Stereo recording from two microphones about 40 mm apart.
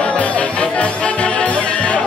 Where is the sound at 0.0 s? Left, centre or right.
Left.